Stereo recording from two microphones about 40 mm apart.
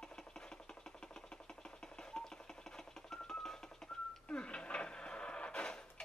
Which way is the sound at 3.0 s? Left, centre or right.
Centre.